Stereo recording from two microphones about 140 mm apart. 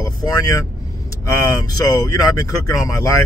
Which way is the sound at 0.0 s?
25° left (ahead or behind).